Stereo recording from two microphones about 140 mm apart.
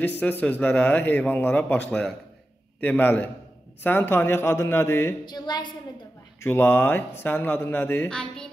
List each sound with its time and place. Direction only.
0.0 s a man's voice: 10° left (ahead or behind)
5.2 s a woman's voice: 30° left (ahead or behind)
6.4 s a man's voice: 15° left (ahead or behind)
8.1 s speech: 5° left (ahead or behind)